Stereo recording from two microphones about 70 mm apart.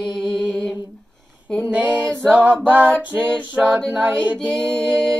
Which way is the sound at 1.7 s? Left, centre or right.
Right.